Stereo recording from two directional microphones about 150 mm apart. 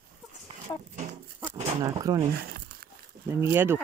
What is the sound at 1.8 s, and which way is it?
Speech, 25° right (ahead or behind).